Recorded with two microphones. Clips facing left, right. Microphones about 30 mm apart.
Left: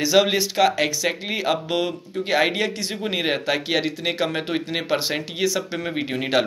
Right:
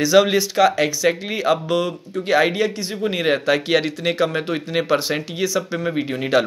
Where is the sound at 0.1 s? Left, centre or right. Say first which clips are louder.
Right 3 dB; centre.